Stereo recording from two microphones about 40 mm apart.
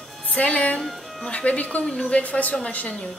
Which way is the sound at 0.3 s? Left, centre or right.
Left.